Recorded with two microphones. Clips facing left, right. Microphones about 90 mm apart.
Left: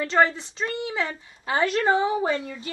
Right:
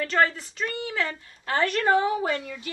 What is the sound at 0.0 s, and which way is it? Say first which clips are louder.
A woman's voice: left 2 dB; 20° left (ahead or behind).